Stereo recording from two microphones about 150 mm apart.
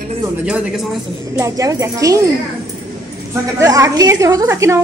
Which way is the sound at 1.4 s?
20° right (ahead or behind).